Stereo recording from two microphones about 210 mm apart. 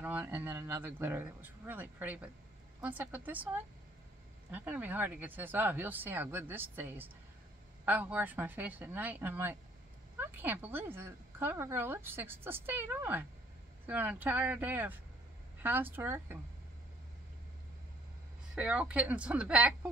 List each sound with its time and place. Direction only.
0.0 s a woman's voice: 10° right (ahead or behind)
18.5 s a woman's voice: 5° right (ahead or behind)